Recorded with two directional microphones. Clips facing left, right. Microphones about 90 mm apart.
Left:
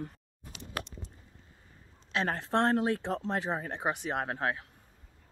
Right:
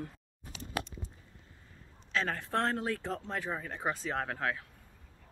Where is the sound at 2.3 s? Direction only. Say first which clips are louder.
Left 7 dB; 25° left (ahead or behind).